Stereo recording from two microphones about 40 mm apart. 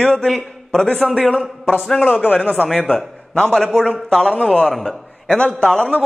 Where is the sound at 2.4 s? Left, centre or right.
Right.